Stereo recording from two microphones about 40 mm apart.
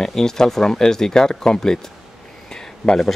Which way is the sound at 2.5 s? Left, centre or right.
Centre.